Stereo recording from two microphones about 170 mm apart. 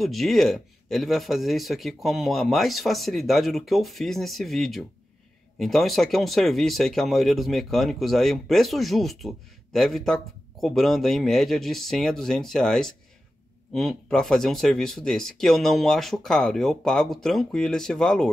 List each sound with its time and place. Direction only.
0.0 s speech: centre (ahead or behind)